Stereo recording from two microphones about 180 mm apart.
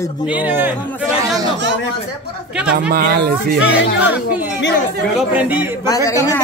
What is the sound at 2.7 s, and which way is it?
Speech, 60° right (ahead or behind).